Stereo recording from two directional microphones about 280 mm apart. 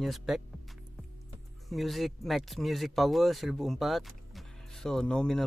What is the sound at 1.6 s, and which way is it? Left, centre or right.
Speech, centre.